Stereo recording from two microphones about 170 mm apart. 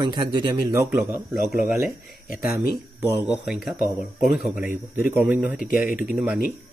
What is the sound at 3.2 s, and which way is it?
Speech, 5° right (ahead or behind).